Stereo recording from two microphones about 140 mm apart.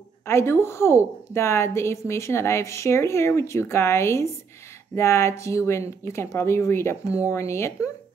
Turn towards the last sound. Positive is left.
turn(degrees=20)  # may be behind; listen again after turning